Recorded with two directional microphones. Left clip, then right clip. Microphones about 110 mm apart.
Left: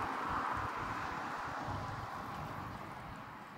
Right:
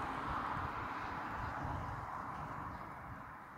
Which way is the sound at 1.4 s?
90° right.